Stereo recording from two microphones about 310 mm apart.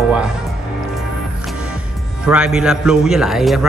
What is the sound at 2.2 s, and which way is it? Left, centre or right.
Speech, centre.